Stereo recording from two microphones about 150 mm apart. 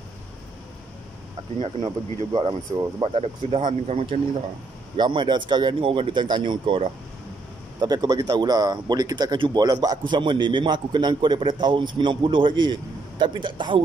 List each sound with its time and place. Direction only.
1.8 s speech: 30° right (ahead or behind)